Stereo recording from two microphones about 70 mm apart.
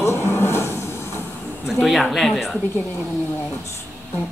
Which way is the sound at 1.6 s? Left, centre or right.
Centre.